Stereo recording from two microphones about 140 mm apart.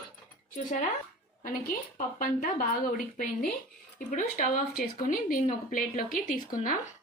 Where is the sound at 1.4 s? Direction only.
80° left.